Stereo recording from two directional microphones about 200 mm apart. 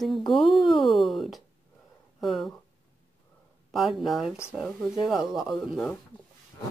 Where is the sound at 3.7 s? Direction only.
Centre (ahead or behind).